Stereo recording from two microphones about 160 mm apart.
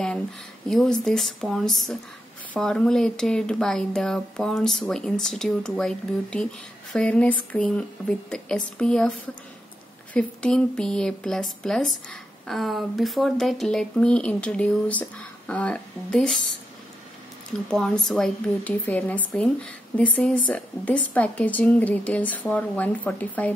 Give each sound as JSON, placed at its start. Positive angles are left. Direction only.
{"t": 0.7, "sound": "speech", "side_deg": 5}
{"t": 17.5, "sound": "speech", "side_deg": 0}